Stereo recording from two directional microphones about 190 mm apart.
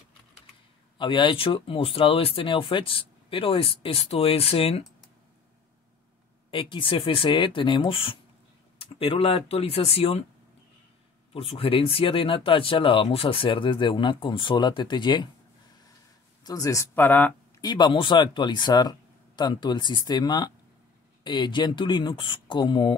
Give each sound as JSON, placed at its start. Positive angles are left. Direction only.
{"t": 0.9, "sound": "speech", "side_deg": 25}
{"t": 6.5, "sound": "speech", "side_deg": 25}
{"t": 11.3, "sound": "speech", "side_deg": 30}
{"t": 16.4, "sound": "speech", "side_deg": 20}
{"t": 17.6, "sound": "speech", "side_deg": 20}